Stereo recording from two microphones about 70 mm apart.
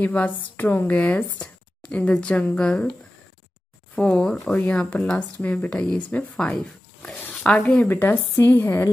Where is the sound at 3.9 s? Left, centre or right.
Centre.